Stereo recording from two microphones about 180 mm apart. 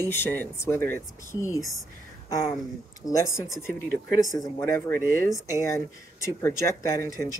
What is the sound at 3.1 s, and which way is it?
Speech, 15° left (ahead or behind).